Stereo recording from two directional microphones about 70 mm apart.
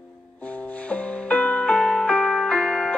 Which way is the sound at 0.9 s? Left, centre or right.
Centre.